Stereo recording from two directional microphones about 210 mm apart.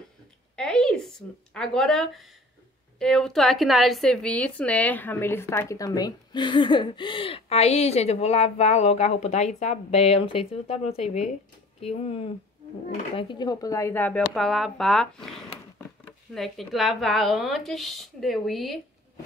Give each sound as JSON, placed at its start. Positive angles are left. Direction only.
{"t": 0.6, "sound": "a woman's voice", "side_deg": 5}
{"t": 16.3, "sound": "a woman's voice", "side_deg": 0}